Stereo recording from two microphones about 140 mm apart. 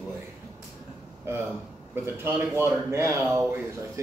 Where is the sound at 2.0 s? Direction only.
20° right (ahead or behind).